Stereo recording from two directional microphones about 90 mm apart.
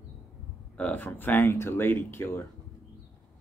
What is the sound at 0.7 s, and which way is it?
Speech, 15° left (ahead or behind).